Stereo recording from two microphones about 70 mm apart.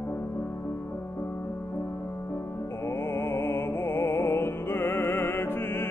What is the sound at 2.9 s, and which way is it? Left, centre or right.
Music, left.